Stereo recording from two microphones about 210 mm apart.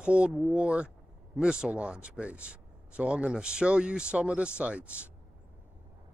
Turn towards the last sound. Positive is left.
turn(degrees=-5)  # may be behind; listen again after turning